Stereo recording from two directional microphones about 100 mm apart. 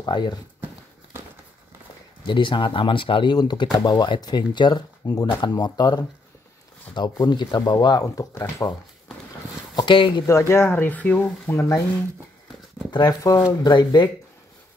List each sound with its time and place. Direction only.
0.0 s speech: 50° left (ahead or behind)
2.2 s speech: 55° left (ahead or behind)
3.3 s speech: 45° left (ahead or behind)
9.8 s speech: 55° left (ahead or behind)
10.2 s speech: 30° left (ahead or behind)
12.9 s speech: 40° left (ahead or behind)
13.7 s speech: 45° left (ahead or behind)